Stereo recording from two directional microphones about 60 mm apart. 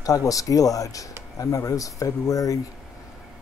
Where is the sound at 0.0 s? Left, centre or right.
Left.